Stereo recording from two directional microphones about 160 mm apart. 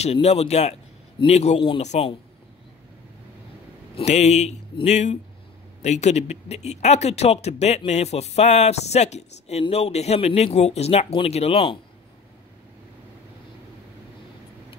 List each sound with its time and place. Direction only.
0.0 s speech: 40° left (ahead or behind)
3.9 s speech: 45° left (ahead or behind)